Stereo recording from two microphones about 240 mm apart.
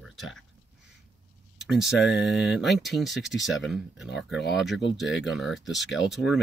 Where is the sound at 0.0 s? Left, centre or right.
Centre.